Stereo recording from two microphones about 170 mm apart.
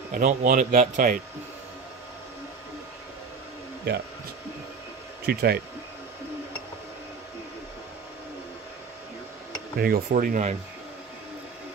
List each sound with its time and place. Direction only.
0.1 s speech: 55° right (ahead or behind)
5.2 s speech: 65° right (ahead or behind)
9.8 s speech: 60° right (ahead or behind)